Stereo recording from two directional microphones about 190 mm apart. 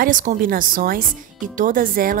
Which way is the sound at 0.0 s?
45° right (ahead or behind).